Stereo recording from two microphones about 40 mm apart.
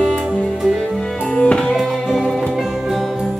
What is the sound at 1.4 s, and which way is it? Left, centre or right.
Music, left.